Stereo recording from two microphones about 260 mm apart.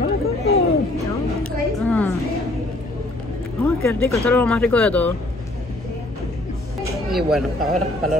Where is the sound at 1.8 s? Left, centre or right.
Centre.